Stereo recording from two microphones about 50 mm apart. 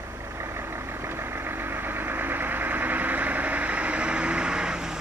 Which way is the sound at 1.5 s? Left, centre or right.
Right.